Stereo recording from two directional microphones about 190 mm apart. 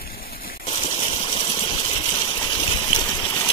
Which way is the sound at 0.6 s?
30° left (ahead or behind).